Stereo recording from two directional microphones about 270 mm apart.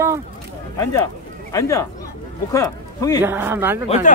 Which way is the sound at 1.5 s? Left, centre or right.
Centre.